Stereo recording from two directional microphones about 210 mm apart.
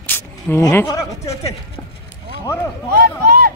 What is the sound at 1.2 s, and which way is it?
Speech, 30° left (ahead or behind).